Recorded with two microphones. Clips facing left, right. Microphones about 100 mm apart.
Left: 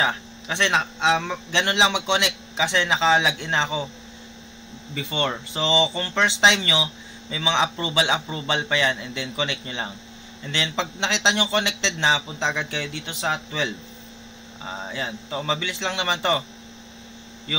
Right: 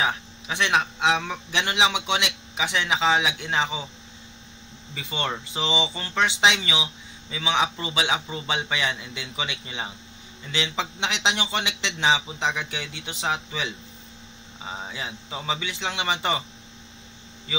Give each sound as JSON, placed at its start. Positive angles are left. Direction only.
{"t": 0.0, "sound": "a man's voice", "side_deg": -10}
{"t": 5.3, "sound": "speech", "side_deg": -15}